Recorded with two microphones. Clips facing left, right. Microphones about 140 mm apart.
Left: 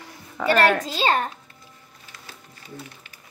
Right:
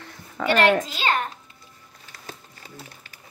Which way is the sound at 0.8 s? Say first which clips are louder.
Left 3 dB; 35° left (ahead or behind).